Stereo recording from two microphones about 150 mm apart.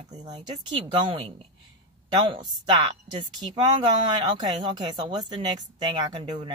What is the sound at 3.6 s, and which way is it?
Speech, 30° right (ahead or behind).